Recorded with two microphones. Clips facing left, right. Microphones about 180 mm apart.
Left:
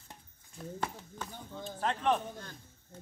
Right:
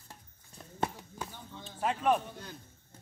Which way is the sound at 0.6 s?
Centre (ahead or behind).